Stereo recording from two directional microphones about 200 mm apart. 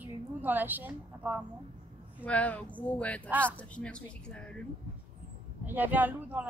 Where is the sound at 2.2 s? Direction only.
5° left (ahead or behind).